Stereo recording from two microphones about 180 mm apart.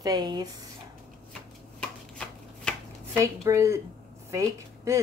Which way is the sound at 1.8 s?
5° left (ahead or behind).